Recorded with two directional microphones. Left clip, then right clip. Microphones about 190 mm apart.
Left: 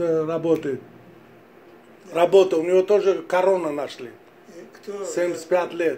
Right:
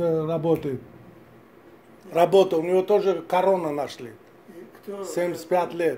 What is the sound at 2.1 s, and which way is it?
Speech, 40° right (ahead or behind).